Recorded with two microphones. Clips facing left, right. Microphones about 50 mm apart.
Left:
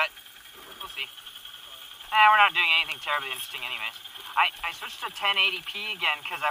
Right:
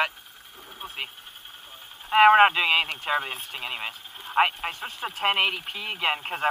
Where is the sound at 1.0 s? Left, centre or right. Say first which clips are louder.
Even; centre.